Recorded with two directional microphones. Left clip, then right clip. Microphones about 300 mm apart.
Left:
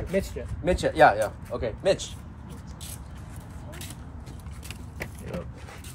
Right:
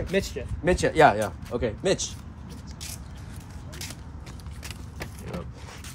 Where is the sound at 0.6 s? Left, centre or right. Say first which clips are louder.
Even; right.